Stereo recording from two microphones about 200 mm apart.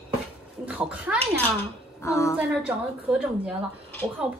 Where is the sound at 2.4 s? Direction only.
5° right (ahead or behind).